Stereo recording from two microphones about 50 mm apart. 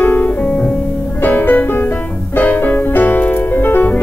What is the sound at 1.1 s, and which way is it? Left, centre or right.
Music, left.